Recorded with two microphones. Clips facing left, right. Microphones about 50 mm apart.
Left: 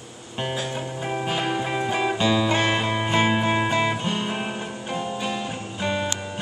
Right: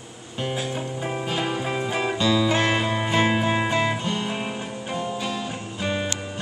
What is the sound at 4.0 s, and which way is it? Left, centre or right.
Music, centre.